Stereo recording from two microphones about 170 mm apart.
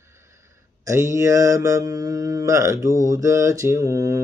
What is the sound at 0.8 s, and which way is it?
Mantra, 20° right (ahead or behind).